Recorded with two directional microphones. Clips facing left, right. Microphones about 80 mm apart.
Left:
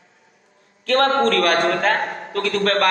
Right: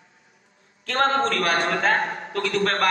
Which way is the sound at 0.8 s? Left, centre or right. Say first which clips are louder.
Left 5 dB; left.